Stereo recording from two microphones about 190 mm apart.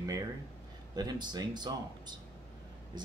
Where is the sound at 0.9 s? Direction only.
20° right (ahead or behind).